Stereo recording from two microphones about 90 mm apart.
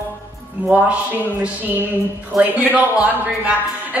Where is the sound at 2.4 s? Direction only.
15° right (ahead or behind).